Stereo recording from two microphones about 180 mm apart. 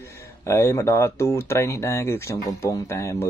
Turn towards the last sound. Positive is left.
turn(degrees=15)  # may be behind; listen again after turning